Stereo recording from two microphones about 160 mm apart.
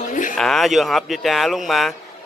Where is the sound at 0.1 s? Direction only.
55° left (ahead or behind).